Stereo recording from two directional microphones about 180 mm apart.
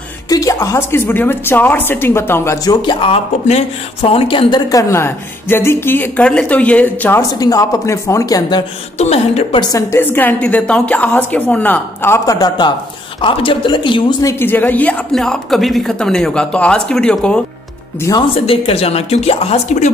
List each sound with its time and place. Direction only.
0.3 s speech: 20° left (ahead or behind)
8.9 s speech: 35° left (ahead or behind)
9.6 s speech: 20° left (ahead or behind)
14.4 s speech: 10° left (ahead or behind)
18.0 s speech: 25° left (ahead or behind)